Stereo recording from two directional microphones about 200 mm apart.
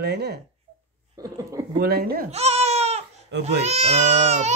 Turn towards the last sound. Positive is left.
turn(degrees=-35)  # may be behind; listen again after turning